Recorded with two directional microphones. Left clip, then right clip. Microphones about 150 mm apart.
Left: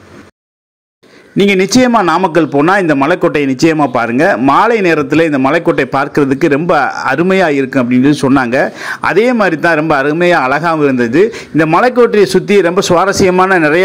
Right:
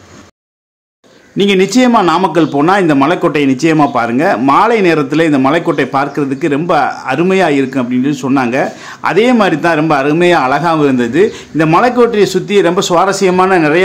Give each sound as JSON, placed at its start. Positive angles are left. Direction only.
{"t": 1.4, "sound": "speech", "side_deg": 30}